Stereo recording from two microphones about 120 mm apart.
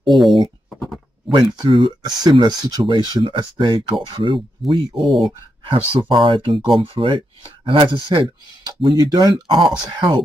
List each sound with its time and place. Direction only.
0.0 s speech: centre (ahead or behind)
1.3 s speech: 40° right (ahead or behind)
5.0 s speech: centre (ahead or behind)
6.0 s speech: 45° right (ahead or behind)